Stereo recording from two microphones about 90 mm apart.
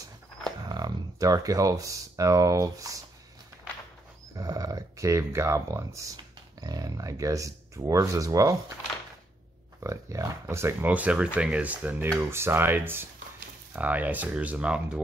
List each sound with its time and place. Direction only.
0.7 s speech: 50° right (ahead or behind)
4.4 s speech: 40° right (ahead or behind)
10.1 s speech: 35° right (ahead or behind)
10.9 s speech: 15° right (ahead or behind)
12.1 s speech: 30° right (ahead or behind); by 15.0 s 10° right (ahead or behind)